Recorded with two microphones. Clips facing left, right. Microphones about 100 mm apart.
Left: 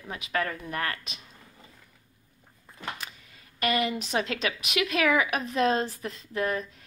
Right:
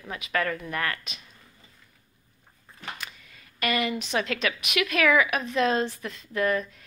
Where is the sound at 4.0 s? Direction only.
35° left (ahead or behind).